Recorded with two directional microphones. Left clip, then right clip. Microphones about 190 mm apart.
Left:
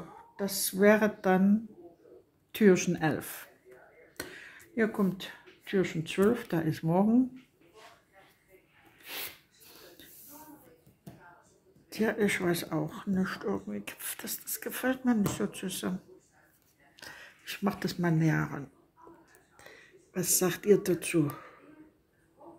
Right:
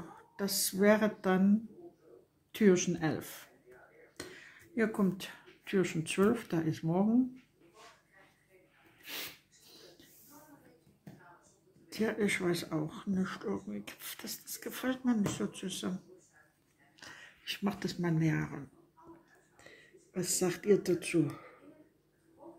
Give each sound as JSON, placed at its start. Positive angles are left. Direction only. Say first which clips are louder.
{"t": 0.0, "sound": "speech", "louder": "left 3 dB", "side_deg": -5}
{"t": 2.5, "sound": "speech", "louder": "left 4 dB", "side_deg": 15}
{"t": 4.2, "sound": "a sound", "louder": "left 5 dB", "side_deg": 15}
{"t": 4.7, "sound": "speech", "louder": "left 3 dB", "side_deg": 0}
{"t": 11.9, "sound": "speech", "louder": "left 4 dB", "side_deg": 10}
{"t": 17.0, "sound": "speech", "louder": "left 2 dB", "side_deg": 15}
{"t": 19.6, "sound": "speech", "louder": "left 4 dB", "side_deg": 10}